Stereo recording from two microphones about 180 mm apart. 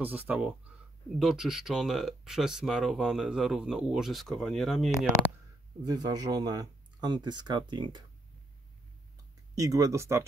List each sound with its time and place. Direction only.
0.0 s speech: 10° right (ahead or behind)
5.9 s speech: 20° right (ahead or behind)
9.6 s speech: 20° right (ahead or behind)